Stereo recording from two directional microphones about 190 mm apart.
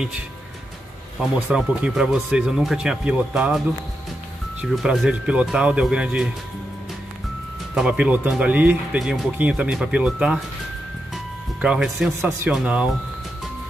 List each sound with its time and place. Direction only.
1.5 s speech: 5° right (ahead or behind)
7.7 s speech: 5° right (ahead or behind)
11.6 s speech: 5° right (ahead or behind)